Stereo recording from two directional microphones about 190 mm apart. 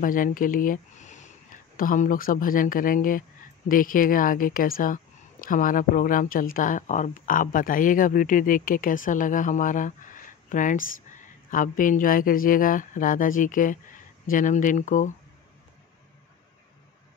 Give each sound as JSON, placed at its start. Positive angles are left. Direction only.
{"t": 0.0, "sound": "speech", "side_deg": 45}